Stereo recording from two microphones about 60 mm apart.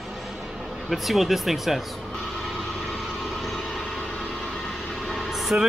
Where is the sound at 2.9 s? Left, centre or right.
Centre.